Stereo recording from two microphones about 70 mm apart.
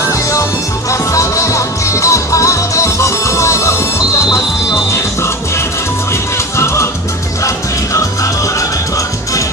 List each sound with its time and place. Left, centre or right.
0.0 s music: left
6.5 s music: left